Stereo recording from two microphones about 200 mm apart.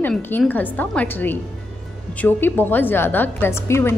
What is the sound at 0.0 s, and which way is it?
A woman's voice, 10° left (ahead or behind).